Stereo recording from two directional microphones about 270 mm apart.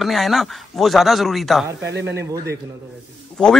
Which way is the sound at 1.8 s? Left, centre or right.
Right.